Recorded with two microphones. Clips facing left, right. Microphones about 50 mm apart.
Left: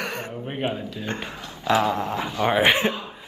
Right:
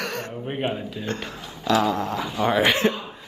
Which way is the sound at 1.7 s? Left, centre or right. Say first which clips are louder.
Even; centre.